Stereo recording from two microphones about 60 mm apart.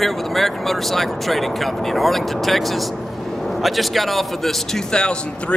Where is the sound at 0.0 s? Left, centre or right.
Centre.